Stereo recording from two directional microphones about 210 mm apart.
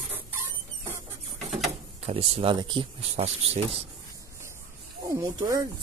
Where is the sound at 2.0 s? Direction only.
30° right (ahead or behind).